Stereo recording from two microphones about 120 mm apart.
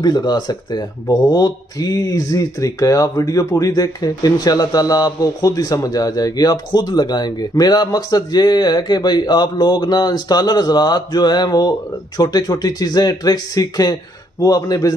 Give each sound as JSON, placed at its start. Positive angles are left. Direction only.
{"t": 0.0, "sound": "a man's voice", "side_deg": 35}